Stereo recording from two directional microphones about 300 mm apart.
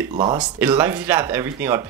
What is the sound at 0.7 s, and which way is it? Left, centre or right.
Speech, centre.